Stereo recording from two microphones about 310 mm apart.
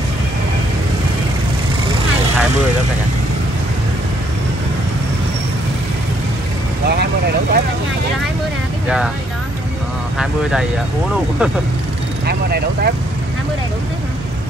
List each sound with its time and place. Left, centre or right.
6.9 s vehicle: right
8.8 s speech: centre
12.3 s speech: right